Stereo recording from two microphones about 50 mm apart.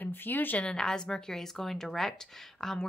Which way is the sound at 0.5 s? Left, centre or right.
Centre.